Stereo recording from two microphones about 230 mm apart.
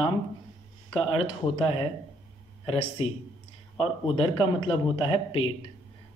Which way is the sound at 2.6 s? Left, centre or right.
Left.